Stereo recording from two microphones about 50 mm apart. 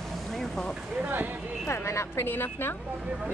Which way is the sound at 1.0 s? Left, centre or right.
Right.